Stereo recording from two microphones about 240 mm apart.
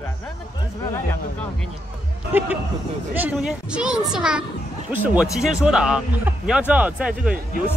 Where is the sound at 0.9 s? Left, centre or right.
Centre.